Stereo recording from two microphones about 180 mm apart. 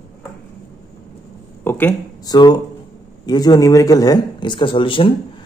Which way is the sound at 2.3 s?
25° left (ahead or behind).